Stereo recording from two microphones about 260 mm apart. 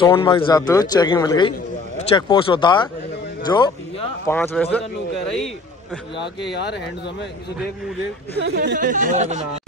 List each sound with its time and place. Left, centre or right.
0.0 s a man's voice: centre
6.4 s speech: left
8.4 s speech: right